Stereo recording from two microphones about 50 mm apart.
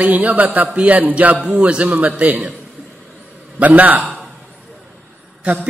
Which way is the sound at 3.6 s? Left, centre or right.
Right.